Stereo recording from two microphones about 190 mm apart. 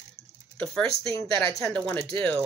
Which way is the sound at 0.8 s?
15° left (ahead or behind).